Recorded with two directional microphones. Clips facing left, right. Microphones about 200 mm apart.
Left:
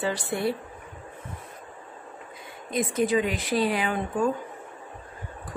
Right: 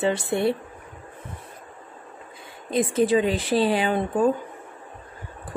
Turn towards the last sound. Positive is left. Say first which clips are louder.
# right 4 dB
turn(degrees=-30)  # may be behind; listen again after turning